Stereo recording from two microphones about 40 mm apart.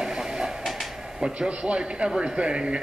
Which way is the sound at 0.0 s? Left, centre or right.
Centre.